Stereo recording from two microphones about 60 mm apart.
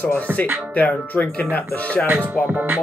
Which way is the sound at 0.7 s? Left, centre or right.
Left.